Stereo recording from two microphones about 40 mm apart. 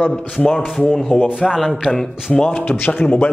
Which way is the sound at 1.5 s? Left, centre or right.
Centre.